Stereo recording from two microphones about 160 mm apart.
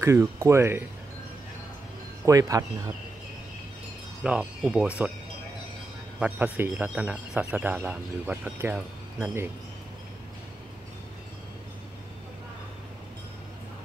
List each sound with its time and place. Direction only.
0.0 s speech: 20° right (ahead or behind)
2.2 s speech: 20° right (ahead or behind)
4.2 s speech: 5° right (ahead or behind)
6.1 s speech: 10° right (ahead or behind)